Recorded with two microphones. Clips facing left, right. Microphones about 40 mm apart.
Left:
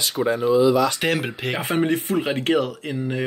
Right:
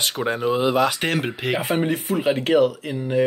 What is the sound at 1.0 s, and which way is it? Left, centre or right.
Speech, centre.